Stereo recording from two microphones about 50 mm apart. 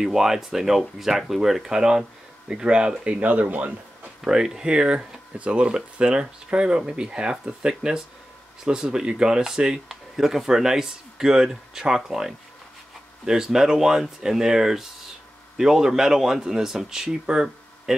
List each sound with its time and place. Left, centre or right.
0.0 s speech: centre; by 3.7 s right
4.2 s speech: centre